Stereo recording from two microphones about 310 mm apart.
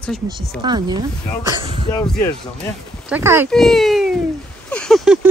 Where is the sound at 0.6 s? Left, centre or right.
Centre.